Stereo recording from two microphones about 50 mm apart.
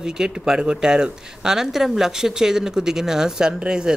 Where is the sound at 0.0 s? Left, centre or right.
Centre.